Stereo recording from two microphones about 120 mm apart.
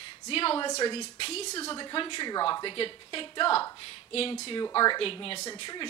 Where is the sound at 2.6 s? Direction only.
50° left (ahead or behind).